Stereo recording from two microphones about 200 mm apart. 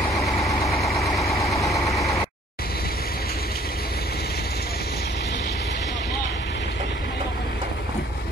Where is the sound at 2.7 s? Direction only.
50° left (ahead or behind).